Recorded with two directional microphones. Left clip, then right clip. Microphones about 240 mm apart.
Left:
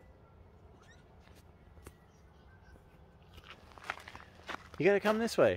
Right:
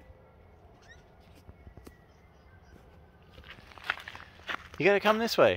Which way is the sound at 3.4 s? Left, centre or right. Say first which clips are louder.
Right 5 dB; centre.